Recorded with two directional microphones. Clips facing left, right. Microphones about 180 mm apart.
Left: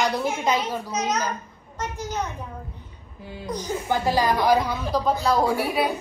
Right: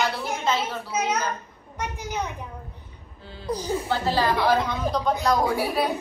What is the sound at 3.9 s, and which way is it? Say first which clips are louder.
A woman's voice: left 3 dB; 15° left (ahead or behind).